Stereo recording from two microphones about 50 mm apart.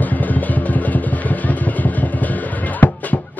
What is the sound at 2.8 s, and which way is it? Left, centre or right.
Music, left.